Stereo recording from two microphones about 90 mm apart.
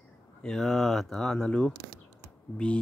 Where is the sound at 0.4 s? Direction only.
5° left (ahead or behind).